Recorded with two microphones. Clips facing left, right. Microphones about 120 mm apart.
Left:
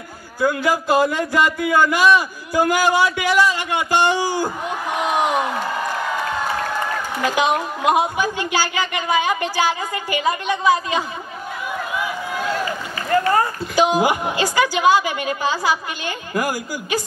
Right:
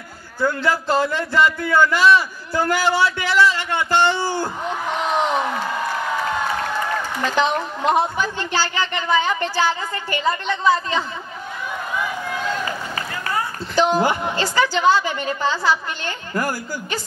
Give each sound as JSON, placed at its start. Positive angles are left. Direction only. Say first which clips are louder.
{"t": 0.4, "sound": "speech", "louder": "left 2 dB", "side_deg": 10}
{"t": 7.2, "sound": "speech", "louder": "left 2 dB", "side_deg": 10}
{"t": 13.1, "sound": "speech", "louder": "left 10 dB", "side_deg": 50}
{"t": 13.7, "sound": "speech", "louder": "left 1 dB", "side_deg": 10}